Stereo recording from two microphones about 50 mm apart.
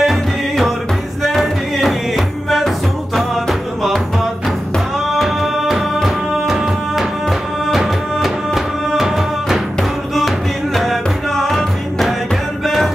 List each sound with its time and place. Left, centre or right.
0.0 s music: centre